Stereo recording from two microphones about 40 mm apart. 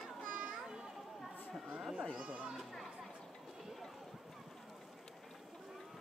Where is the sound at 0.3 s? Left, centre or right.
Right.